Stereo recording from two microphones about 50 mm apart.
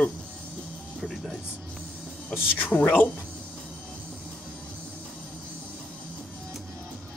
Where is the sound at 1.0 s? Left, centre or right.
Centre.